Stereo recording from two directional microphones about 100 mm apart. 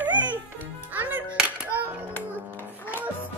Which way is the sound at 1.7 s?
20° right (ahead or behind).